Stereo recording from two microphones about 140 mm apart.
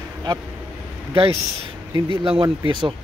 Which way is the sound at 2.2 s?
40° right (ahead or behind).